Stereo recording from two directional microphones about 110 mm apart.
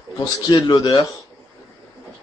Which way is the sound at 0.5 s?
40° left (ahead or behind).